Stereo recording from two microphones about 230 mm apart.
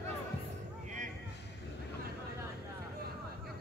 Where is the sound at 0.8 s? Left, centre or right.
Right.